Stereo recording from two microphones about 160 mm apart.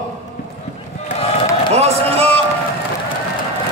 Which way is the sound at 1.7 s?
40° right (ahead or behind).